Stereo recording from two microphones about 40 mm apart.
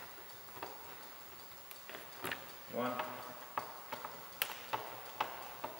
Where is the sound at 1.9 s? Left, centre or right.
Centre.